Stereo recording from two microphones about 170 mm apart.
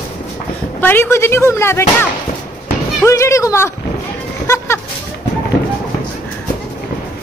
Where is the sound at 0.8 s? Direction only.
10° left (ahead or behind).